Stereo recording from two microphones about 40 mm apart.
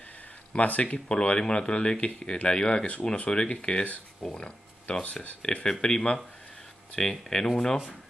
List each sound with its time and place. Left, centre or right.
0.5 s speech: left
5.7 s speech: centre